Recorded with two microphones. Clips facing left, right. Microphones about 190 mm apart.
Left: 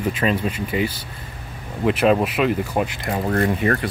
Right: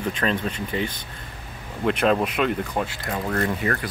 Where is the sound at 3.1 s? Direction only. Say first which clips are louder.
Left 4 dB; 30° left (ahead or behind).